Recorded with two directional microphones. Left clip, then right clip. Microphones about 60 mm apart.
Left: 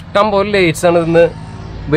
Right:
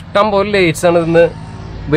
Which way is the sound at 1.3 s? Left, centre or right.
Right.